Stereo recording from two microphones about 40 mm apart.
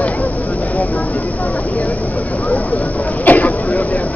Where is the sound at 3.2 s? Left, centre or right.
Left.